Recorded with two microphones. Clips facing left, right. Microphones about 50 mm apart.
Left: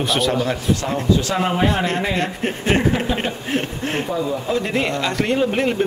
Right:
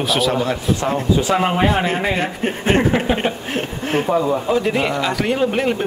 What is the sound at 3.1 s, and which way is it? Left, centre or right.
Speech, right.